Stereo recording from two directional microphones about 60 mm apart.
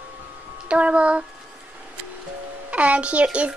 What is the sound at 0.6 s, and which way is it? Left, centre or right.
Speech, centre.